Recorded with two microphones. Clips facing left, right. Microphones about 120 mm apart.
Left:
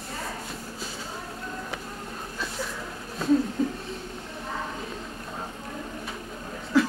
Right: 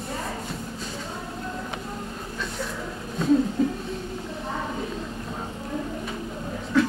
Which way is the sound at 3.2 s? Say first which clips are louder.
Right 2 dB; centre (ahead or behind).